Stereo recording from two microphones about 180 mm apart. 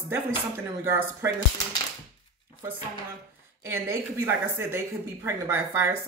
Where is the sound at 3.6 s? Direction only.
15° right (ahead or behind).